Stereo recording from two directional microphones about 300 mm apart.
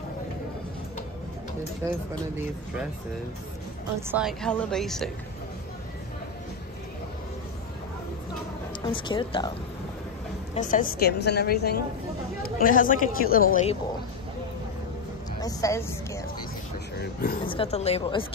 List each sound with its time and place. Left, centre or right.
4.1 s speech: centre
8.8 s speech: centre
10.5 s a woman's voice: left
15.4 s speech: centre
17.4 s speech: centre